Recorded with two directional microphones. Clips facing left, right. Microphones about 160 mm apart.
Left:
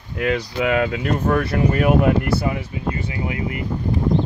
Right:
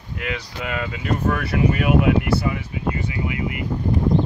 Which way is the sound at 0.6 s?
60° left (ahead or behind).